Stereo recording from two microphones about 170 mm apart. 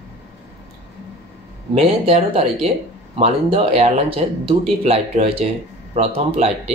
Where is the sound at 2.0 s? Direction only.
40° right (ahead or behind).